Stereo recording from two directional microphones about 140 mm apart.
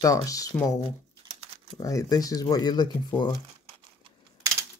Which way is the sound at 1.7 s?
25° left (ahead or behind).